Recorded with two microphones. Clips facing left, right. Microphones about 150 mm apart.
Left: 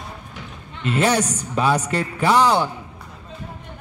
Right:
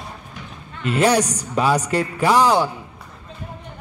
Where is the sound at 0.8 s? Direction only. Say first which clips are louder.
Right 2 dB; 10° right (ahead or behind).